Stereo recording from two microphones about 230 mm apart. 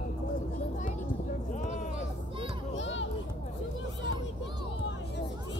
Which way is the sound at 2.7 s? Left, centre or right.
Left.